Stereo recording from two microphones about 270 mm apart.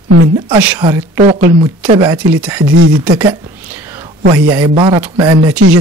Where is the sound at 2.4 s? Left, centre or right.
Centre.